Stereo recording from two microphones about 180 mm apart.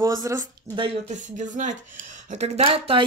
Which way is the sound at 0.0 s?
15° right (ahead or behind).